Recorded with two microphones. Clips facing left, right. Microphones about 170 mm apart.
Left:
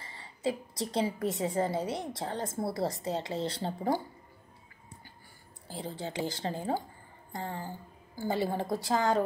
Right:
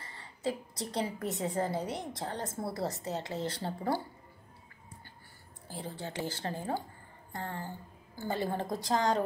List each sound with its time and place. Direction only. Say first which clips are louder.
0.0 s a woman's voice: left 2 dB; 10° left (ahead or behind)
5.7 s a woman's voice: left 3 dB; 15° left (ahead or behind)